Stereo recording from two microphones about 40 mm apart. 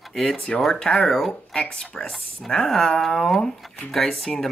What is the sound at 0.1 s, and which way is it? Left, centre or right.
Speech, centre.